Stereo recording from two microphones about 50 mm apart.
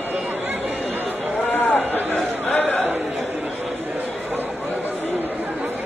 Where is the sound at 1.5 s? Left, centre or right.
Left.